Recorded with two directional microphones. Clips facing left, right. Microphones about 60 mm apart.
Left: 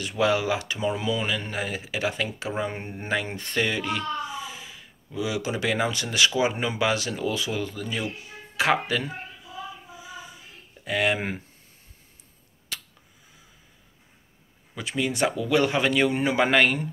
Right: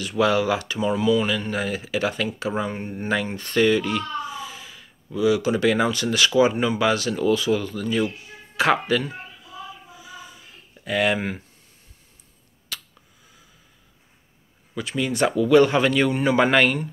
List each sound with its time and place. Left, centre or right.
0.2 s speech: centre
10.9 s speech: centre
14.8 s speech: centre
16.3 s speech: centre